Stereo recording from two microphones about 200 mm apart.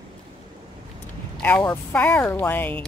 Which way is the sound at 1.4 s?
10° left (ahead or behind).